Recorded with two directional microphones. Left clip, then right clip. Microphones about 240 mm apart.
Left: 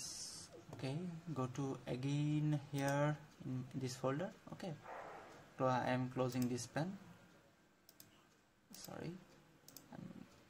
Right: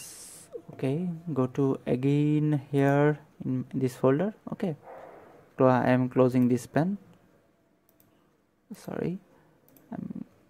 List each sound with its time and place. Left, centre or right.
0.7 s speech: right
8.8 s speech: right